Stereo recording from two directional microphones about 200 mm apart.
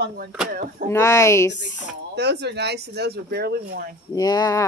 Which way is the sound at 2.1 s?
55° right (ahead or behind).